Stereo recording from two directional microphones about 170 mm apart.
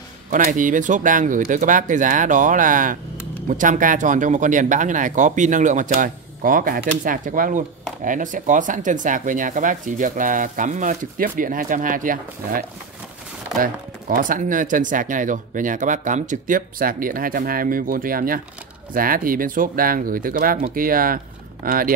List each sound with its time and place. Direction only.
0.3 s speech: 50° right (ahead or behind)